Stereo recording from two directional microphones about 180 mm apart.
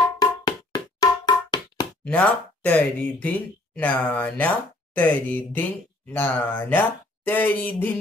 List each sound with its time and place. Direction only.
0.2 s music: 20° left (ahead or behind)
2.0 s speech: 10° left (ahead or behind)